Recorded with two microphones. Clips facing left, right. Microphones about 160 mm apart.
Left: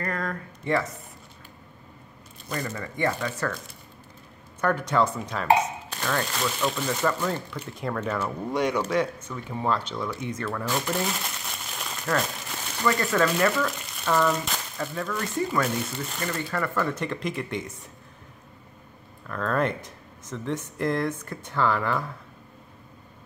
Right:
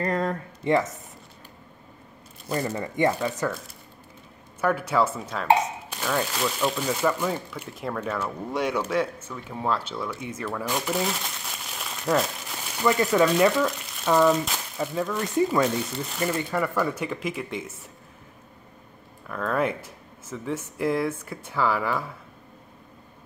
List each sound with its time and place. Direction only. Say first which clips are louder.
0.0 s speech: right 5 dB; 25° right (ahead or behind)
2.7 s speech: right 4 dB; 20° right (ahead or behind)
4.6 s speech: even; 5° right (ahead or behind)
12.8 s speech: right 3 dB; 15° right (ahead or behind)
19.2 s speech: even; 5° right (ahead or behind)